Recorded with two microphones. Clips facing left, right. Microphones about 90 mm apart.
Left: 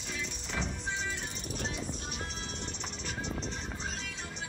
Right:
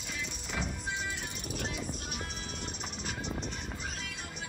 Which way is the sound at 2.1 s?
50° right (ahead or behind).